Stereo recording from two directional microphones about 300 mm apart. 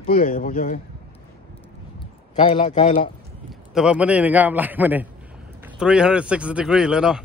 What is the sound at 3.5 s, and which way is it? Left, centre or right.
A man's voice, centre.